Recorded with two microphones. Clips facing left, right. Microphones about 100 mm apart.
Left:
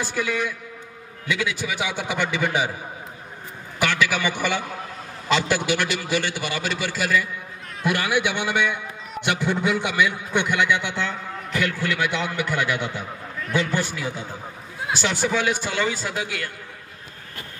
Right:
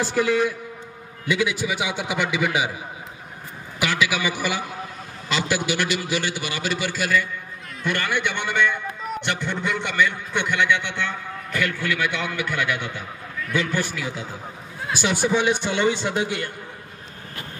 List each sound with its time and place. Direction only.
0.0 s a man's voice: 35° right (ahead or behind)
1.3 s a man's voice: 20° right (ahead or behind)
3.8 s a man's voice: 5° right (ahead or behind); by 10.9 s 10° left (ahead or behind)
11.8 s a man's voice: 30° left (ahead or behind)
15.0 s a man's voice: 15° right (ahead or behind)